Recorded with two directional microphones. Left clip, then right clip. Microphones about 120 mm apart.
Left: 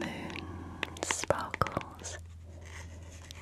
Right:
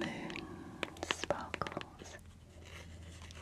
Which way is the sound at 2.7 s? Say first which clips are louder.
Left 4 dB; 50° left (ahead or behind).